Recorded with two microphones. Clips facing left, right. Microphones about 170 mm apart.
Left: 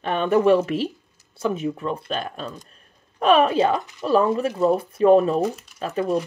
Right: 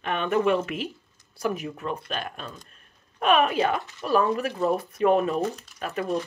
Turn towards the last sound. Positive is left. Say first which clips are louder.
# left 5 dB
turn(degrees=30)  # may be behind; listen again after turning